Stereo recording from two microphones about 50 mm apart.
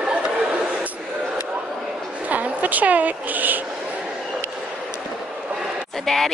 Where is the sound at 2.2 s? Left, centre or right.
Right.